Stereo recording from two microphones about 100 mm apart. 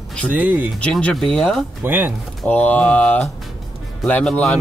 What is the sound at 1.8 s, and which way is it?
Speech, 15° right (ahead or behind).